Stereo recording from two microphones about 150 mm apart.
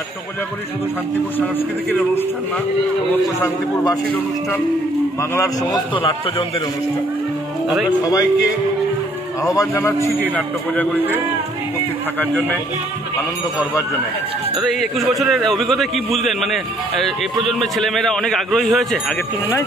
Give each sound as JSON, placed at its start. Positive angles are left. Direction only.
{"t": 1.9, "sound": "a man's voice", "side_deg": 15}
{"t": 3.4, "sound": "a man's voice", "side_deg": 25}
{"t": 5.3, "sound": "a man's voice", "side_deg": 20}
{"t": 5.9, "sound": "a man's voice", "side_deg": 35}
{"t": 9.4, "sound": "a man's voice", "side_deg": 20}
{"t": 12.2, "sound": "a man's voice", "side_deg": 10}
{"t": 14.6, "sound": "a man's voice", "side_deg": 0}